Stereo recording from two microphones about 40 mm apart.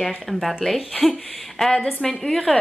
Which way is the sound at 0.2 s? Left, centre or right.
Centre.